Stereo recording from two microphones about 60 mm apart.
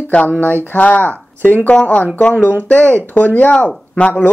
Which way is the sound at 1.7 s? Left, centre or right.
Centre.